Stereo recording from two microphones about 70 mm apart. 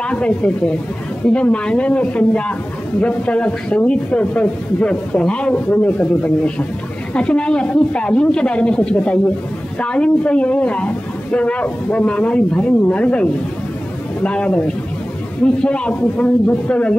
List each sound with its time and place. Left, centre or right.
0.0 s a man's voice: centre